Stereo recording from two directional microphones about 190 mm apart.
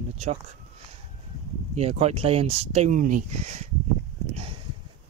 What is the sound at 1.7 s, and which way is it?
Speech, 35° right (ahead or behind).